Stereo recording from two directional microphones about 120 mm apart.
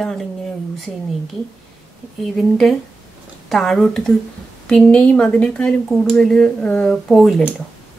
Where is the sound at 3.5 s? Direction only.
5° left (ahead or behind).